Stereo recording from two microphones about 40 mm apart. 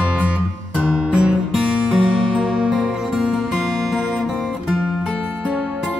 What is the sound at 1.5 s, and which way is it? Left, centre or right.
Music, right.